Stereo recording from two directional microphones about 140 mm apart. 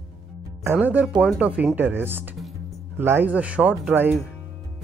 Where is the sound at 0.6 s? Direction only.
15° right (ahead or behind).